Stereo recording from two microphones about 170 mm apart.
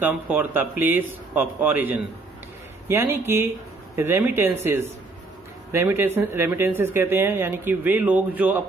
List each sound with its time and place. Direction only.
0.0 s speech: 10° right (ahead or behind)